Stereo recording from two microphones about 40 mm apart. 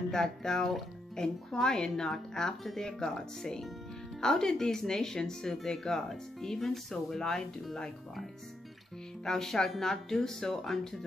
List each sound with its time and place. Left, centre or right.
0.1 s speech: centre
9.2 s speech: centre